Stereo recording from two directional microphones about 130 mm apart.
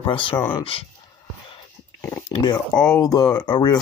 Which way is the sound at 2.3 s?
30° left (ahead or behind).